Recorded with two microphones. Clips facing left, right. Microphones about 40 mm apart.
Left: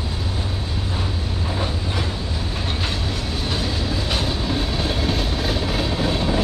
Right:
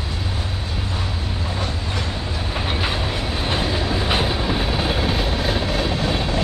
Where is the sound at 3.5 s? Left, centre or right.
Right.